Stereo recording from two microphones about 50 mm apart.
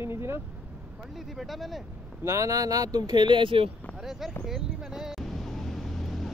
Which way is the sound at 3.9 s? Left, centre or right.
Centre.